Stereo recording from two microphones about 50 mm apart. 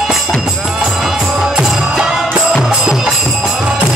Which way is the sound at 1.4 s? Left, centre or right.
Centre.